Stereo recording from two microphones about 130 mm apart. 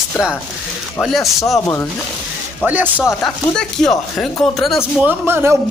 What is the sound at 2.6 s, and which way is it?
Speech, 15° right (ahead or behind).